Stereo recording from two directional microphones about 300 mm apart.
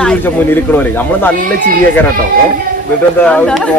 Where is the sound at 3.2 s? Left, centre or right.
Centre.